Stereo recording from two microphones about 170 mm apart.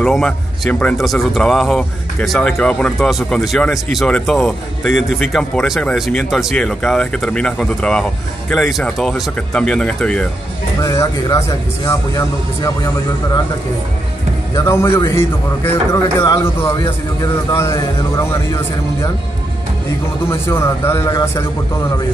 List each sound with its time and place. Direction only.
0.0 s speech: 5° left (ahead or behind)
10.8 s speech: 20° left (ahead or behind)
14.5 s a man's voice: 15° left (ahead or behind)
20.2 s a man's voice: 15° left (ahead or behind)